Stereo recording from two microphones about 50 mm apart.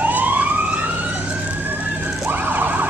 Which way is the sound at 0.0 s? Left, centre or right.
Right.